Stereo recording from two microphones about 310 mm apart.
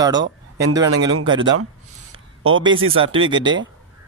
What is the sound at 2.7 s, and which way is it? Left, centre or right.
Speech, right.